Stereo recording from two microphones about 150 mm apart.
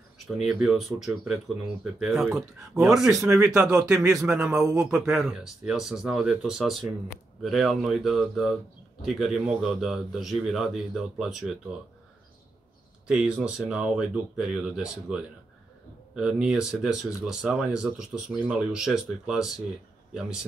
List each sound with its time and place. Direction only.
0.4 s speech: 5° right (ahead or behind)
3.1 s speech: 20° right (ahead or behind)
3.4 s speech: 5° right (ahead or behind)
13.0 s speech: 5° right (ahead or behind)